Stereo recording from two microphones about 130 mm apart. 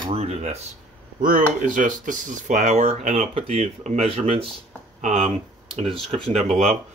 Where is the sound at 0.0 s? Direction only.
50° right (ahead or behind).